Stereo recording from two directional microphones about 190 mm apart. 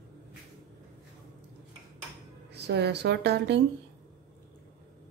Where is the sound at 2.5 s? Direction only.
60° right (ahead or behind).